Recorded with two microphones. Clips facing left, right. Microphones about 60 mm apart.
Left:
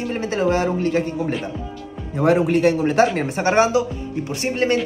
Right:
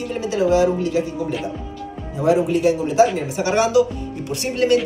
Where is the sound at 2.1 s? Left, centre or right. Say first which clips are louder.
Left 1 dB; left.